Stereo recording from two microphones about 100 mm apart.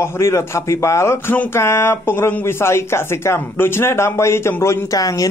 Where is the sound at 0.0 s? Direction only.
25° left (ahead or behind).